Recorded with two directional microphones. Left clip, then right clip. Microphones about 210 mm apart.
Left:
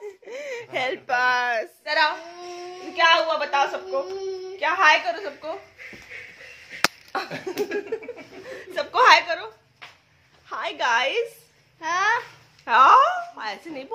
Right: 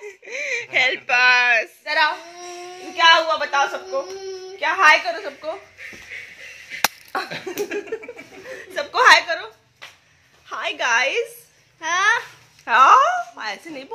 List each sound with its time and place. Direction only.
0.3 s whimper: 25° left (ahead or behind)
1.9 s a woman's voice: 15° right (ahead or behind)
4.0 s speech: 10° left (ahead or behind)
4.6 s a woman's voice: 15° right (ahead or behind)
7.1 s slap: 20° right (ahead or behind)
7.9 s a woman's voice: 15° right (ahead or behind)
10.5 s a woman's voice: 10° right (ahead or behind)
11.8 s a child's voice: 5° left (ahead or behind)
12.6 s speech: 10° right (ahead or behind)